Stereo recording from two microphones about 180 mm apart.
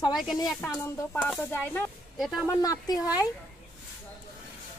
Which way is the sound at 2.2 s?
Centre (ahead or behind).